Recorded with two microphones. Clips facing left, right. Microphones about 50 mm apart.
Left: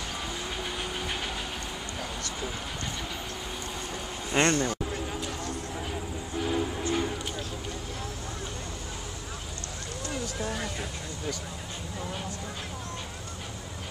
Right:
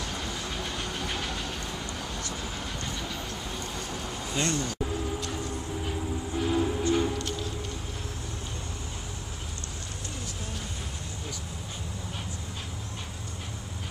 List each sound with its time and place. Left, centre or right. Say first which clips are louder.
0.1 s vehicle: even; centre
4.3 s speech: left 6 dB; left
5.9 s music: right 2 dB; centre